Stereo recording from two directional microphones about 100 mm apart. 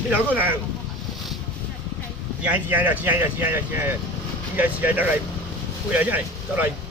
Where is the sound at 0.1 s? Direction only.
20° right (ahead or behind).